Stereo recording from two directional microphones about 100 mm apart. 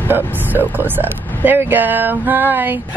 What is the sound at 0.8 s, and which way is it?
Speech, 20° right (ahead or behind).